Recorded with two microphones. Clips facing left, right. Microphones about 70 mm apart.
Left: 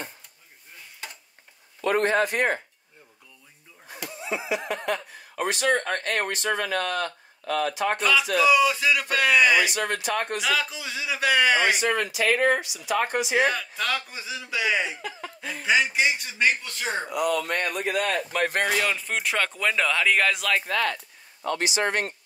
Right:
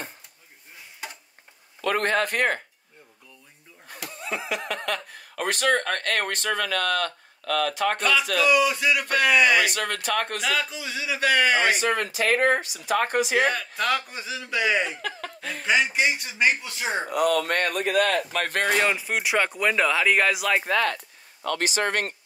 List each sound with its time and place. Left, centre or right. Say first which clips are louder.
1.9 s speech: left 1 dB; right
4.1 s speech: left 1 dB; right
8.0 s speech: left 3 dB; centre
9.6 s speech: even; right
10.4 s speech: even; centre
11.8 s speech: even; right
13.4 s speech: even; centre
15.0 s speech: right 2 dB; right
15.6 s speech: even; centre
17.1 s speech: right 4 dB; right
18.9 s speech: right 2 dB; centre
20.7 s speech: right 2 dB; right